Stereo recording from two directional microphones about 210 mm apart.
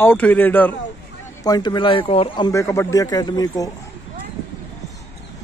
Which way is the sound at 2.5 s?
15° left (ahead or behind).